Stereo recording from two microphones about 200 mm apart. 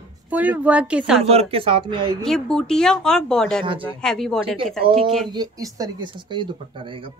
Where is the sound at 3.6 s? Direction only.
25° right (ahead or behind).